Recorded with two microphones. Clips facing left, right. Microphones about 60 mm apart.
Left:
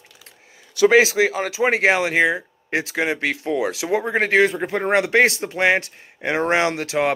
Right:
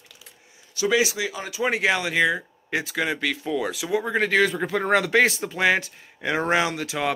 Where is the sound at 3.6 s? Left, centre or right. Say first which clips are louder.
Left 4 dB; left.